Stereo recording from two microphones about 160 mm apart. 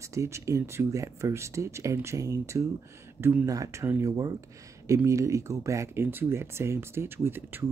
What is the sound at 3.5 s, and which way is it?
Speech, 20° right (ahead or behind).